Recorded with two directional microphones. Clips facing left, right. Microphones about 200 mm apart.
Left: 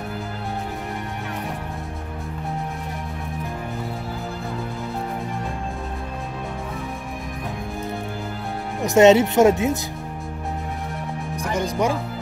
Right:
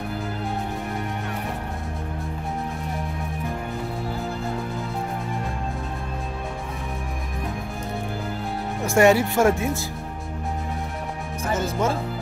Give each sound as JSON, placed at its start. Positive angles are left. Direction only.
{"t": 8.8, "sound": "speech", "side_deg": 20}
{"t": 11.5, "sound": "speech", "side_deg": 15}